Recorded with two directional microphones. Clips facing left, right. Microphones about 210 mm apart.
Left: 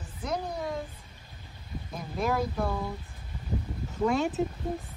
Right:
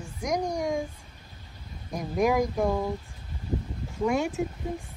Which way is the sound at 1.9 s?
15° right (ahead or behind).